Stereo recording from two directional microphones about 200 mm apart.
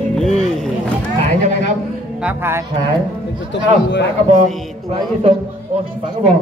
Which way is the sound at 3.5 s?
60° left (ahead or behind).